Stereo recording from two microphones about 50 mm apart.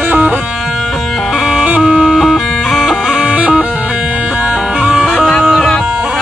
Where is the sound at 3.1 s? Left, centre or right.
Right.